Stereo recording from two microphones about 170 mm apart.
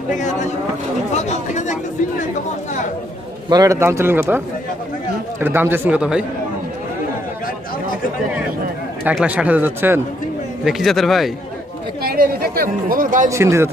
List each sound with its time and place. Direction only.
0.1 s speech: 45° left (ahead or behind)
3.4 s speech: 20° right (ahead or behind)
5.4 s speech: 10° right (ahead or behind)
9.0 s speech: 5° right (ahead or behind)
10.6 s a man's voice: centre (ahead or behind)
12.0 s speech: 65° right (ahead or behind)
13.3 s speech: 15° right (ahead or behind)